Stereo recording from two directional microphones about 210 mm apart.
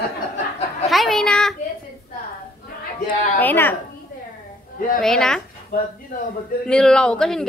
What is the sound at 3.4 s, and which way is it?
Speech, 10° left (ahead or behind).